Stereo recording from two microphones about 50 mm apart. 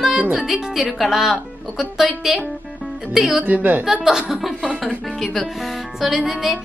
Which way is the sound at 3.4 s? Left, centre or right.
Right.